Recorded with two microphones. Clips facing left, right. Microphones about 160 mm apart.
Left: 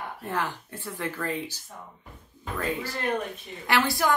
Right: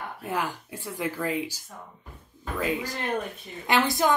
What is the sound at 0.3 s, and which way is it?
A woman's voice, 10° right (ahead or behind).